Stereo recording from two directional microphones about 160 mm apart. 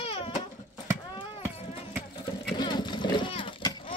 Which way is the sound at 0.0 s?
35° left (ahead or behind).